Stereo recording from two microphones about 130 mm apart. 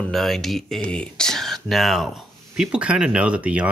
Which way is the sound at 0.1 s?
Centre (ahead or behind).